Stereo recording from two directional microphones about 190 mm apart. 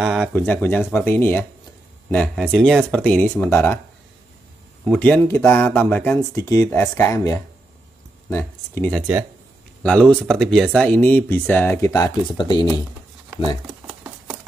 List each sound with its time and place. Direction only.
0.0 s speech: centre (ahead or behind)
4.8 s speech: 5° left (ahead or behind)
8.9 s speech: 5° right (ahead or behind); by 12.6 s 25° left (ahead or behind)
13.8 s a sound: 5° right (ahead or behind)